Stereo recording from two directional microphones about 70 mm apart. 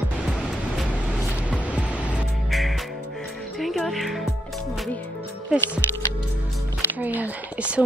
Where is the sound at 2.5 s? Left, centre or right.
Centre.